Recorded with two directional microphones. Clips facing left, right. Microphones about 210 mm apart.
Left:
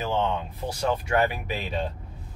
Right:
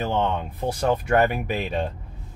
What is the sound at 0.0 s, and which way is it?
Speech, 55° right (ahead or behind).